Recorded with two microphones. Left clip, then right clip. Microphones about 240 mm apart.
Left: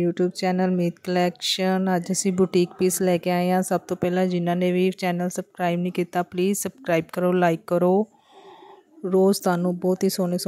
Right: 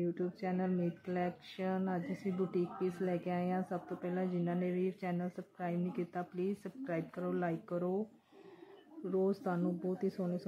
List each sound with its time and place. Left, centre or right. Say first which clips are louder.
0.0 s speech: left 15 dB; left
9.1 s speech: left 15 dB; left